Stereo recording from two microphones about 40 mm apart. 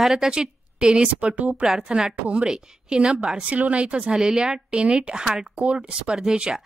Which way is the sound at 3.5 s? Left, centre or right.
Right.